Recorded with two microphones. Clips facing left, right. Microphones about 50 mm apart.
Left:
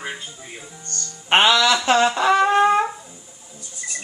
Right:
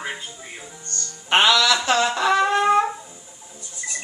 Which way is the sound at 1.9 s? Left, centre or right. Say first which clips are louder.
Left 3 dB; left.